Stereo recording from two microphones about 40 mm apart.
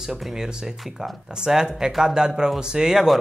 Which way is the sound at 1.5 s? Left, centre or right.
Centre.